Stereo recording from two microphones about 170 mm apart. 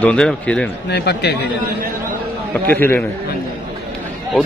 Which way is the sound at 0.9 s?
75° left (ahead or behind).